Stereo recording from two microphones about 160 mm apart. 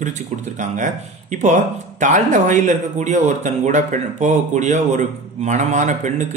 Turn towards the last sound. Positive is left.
turn(degrees=-50)  # may be behind; listen again after turning